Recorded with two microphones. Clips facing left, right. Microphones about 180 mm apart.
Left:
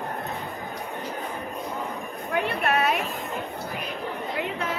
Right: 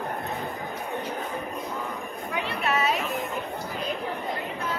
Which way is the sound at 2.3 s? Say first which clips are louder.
Left 3 dB; 55° left (ahead or behind).